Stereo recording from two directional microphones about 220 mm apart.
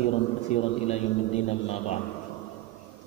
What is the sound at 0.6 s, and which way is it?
Mantra, 30° left (ahead or behind).